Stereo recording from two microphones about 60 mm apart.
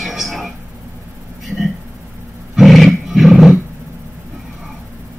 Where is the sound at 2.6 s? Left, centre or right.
Centre.